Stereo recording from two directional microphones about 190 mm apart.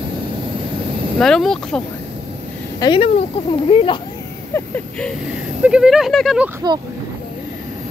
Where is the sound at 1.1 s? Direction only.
5° left (ahead or behind).